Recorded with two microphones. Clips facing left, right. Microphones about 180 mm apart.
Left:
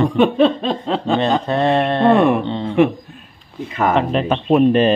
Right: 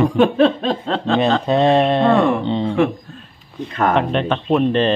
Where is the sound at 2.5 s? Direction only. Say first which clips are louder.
Right 3 dB; 15° right (ahead or behind).